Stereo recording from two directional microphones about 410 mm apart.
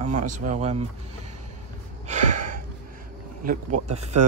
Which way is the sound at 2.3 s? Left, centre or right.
Right.